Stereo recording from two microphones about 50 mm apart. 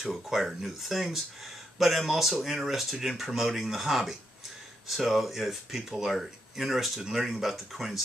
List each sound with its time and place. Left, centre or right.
0.1 s speech: centre